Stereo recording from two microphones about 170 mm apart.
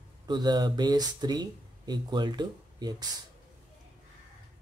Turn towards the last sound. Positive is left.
turn(degrees=-25)  # may be behind; listen again after turning